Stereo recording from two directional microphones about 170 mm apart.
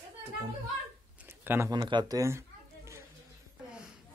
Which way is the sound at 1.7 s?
25° right (ahead or behind).